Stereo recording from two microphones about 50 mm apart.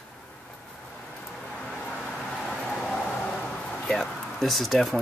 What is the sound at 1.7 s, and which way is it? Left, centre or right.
Vehicle, centre.